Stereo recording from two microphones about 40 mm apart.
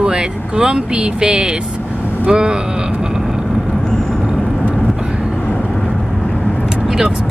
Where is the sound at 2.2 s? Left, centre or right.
Right.